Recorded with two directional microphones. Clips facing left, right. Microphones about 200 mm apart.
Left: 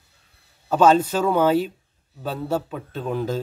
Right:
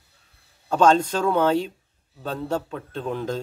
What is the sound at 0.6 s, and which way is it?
A man's voice, 5° left (ahead or behind).